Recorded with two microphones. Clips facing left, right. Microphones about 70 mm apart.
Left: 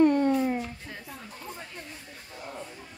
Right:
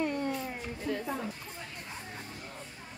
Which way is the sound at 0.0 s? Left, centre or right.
Left.